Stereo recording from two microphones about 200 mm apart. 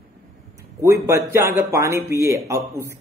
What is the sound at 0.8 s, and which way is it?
Speech, 15° right (ahead or behind).